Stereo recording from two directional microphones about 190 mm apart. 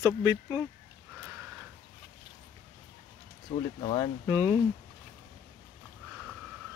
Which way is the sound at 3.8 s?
25° left (ahead or behind).